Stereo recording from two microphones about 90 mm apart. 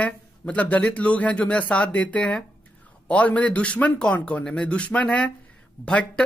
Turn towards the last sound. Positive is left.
turn(degrees=10)  # may be behind; listen again after turning